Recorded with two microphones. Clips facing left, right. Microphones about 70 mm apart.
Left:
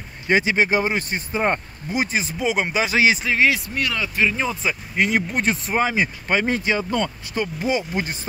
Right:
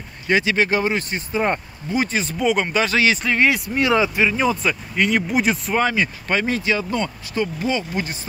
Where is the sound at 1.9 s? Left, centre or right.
Centre.